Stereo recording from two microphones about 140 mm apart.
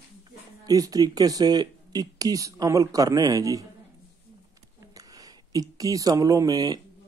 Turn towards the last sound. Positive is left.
turn(degrees=-25)  # may be behind; listen again after turning